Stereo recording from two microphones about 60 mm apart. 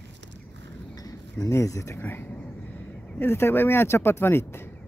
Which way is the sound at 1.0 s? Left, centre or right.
Left.